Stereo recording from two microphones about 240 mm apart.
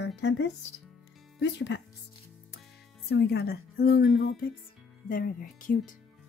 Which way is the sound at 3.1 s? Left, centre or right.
Left.